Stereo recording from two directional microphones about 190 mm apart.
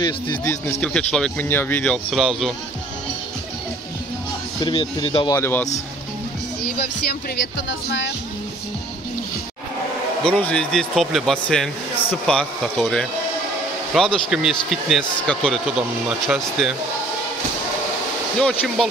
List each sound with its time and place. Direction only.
0.0 s speech: 20° left (ahead or behind); by 2.5 s centre (ahead or behind)
4.6 s speech: 25° left (ahead or behind)
5.4 s speech: 10° left (ahead or behind)
7.5 s speech: 70° left (ahead or behind)
10.2 s speech: 5° left (ahead or behind)